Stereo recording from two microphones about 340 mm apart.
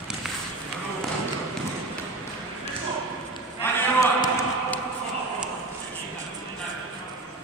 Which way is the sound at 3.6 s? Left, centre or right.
Centre.